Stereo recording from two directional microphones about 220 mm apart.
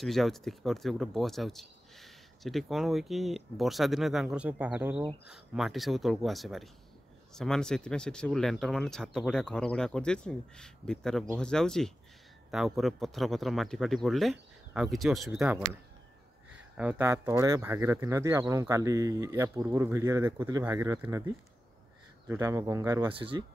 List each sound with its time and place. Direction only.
0.0 s speech: centre (ahead or behind)
22.3 s speech: 15° right (ahead or behind)